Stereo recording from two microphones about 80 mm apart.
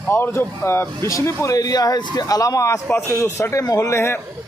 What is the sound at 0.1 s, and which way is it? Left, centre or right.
Speech, left.